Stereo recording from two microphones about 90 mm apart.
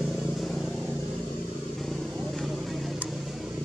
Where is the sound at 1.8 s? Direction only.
Centre (ahead or behind).